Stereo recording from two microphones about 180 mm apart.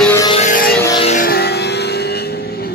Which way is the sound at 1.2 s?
60° left (ahead or behind).